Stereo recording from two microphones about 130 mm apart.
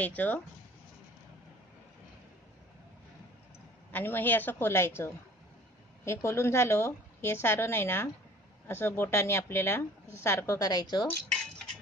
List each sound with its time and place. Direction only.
0.0 s speech: 10° left (ahead or behind)
3.9 s a woman's voice: 15° left (ahead or behind); by 11.1 s 30° left (ahead or behind)